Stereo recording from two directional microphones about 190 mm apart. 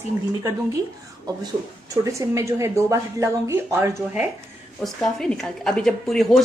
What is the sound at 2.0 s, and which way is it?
A woman's voice, 15° right (ahead or behind).